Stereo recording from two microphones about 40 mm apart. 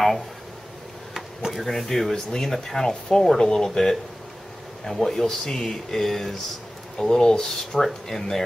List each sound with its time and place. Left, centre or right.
1.5 s speech: centre